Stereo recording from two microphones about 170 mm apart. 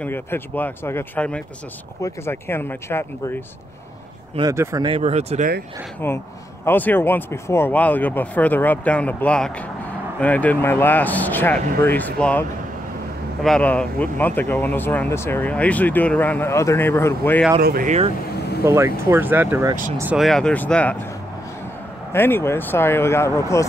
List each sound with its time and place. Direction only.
0.0 s speech: 10° left (ahead or behind)
4.4 s speech: 20° right (ahead or behind)
4.8 s speech: 35° right (ahead or behind)
5.9 s speech: 15° left (ahead or behind)
17.6 s speech: 60° right (ahead or behind)
18.6 s speech: 15° right (ahead or behind)
20.2 s speech: 5° left (ahead or behind)
22.1 s speech: 15° left (ahead or behind)